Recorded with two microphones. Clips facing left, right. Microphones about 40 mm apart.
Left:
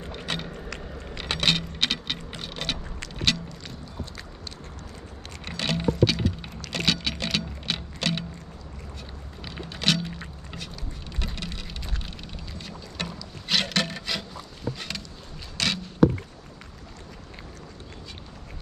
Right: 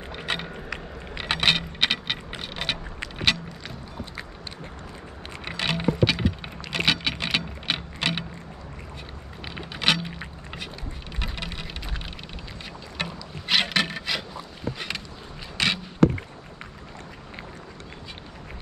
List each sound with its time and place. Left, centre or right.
0.1 s keys jangling: centre
5.4 s a sound: centre
9.4 s a sound: centre
11.1 s rain on surface: centre
12.6 s boat: centre
15.5 s rowboat: right